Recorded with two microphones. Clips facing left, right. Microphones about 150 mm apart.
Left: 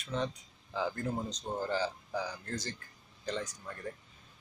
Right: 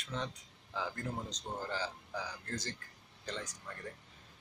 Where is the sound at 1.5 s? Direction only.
30° left (ahead or behind).